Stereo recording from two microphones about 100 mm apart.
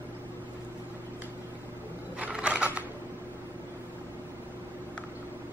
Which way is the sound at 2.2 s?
10° right (ahead or behind).